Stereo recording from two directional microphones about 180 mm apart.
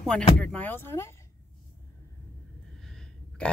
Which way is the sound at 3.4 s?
5° left (ahead or behind).